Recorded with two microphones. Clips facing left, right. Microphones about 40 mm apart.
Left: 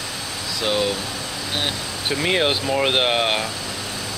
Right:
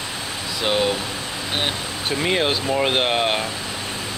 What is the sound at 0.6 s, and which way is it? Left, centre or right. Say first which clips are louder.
Speech: right 1 dB; centre.